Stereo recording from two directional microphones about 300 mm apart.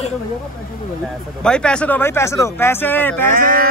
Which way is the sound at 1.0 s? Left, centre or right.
Centre.